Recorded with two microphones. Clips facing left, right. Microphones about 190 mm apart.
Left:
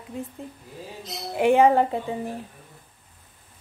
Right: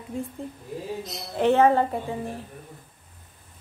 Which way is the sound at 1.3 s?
10° left (ahead or behind).